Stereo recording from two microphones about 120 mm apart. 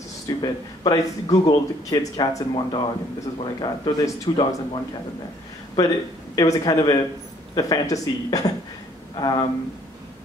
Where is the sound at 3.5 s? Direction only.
30° left (ahead or behind).